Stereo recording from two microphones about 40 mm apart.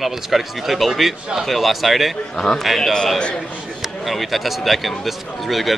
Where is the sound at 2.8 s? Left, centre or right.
Centre.